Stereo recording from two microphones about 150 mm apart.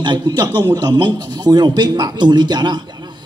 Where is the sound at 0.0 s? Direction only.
30° right (ahead or behind).